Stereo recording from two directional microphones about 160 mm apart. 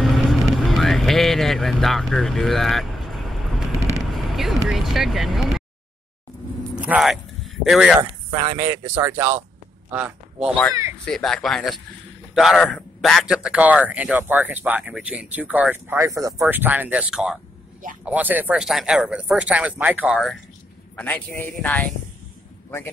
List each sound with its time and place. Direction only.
0.0 s vehicle: centre (ahead or behind)
6.7 s a sound: 5° right (ahead or behind)
8.5 s speech: 15° right (ahead or behind)
11.1 s speech: 5° left (ahead or behind)
20.9 s a man's voice: 10° left (ahead or behind)